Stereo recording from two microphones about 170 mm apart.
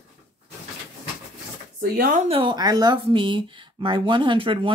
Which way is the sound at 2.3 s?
30° right (ahead or behind).